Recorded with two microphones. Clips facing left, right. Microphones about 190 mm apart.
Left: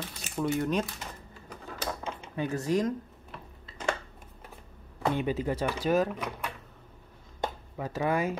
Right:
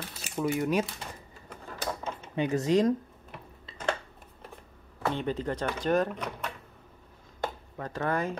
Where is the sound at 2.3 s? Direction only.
20° right (ahead or behind).